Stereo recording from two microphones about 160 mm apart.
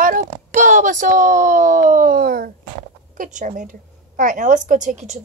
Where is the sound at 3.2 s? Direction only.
50° right (ahead or behind).